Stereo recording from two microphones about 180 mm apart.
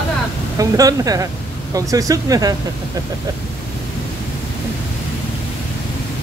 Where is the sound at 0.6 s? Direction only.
20° right (ahead or behind).